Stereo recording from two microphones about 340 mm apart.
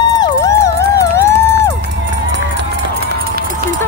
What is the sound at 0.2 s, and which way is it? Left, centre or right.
Music, centre.